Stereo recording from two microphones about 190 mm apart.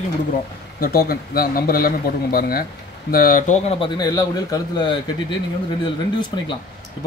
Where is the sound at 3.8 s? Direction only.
20° left (ahead or behind).